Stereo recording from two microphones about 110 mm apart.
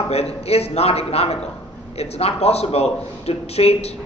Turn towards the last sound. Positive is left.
turn(degrees=65)  # may be behind; listen again after turning